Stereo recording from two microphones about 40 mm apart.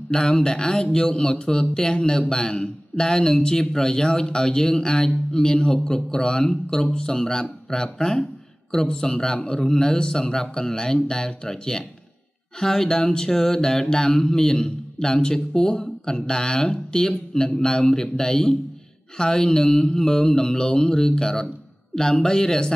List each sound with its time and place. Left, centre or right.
0.1 s a man's voice: centre
17.6 s a man's voice: centre